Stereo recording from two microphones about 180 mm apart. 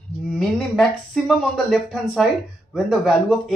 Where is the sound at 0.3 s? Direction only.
5° left (ahead or behind).